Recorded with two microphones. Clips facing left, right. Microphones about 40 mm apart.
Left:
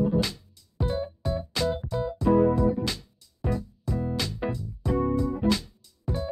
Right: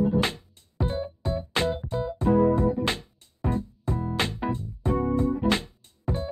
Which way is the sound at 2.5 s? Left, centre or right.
Right.